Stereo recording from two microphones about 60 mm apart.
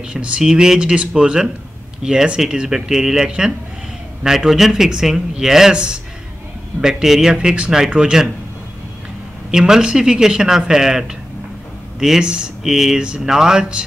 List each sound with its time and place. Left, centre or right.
0.1 s speech: centre
9.5 s speech: centre